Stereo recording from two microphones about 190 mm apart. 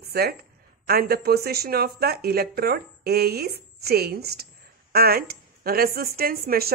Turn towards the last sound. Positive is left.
turn(degrees=-50)  # may be behind; listen again after turning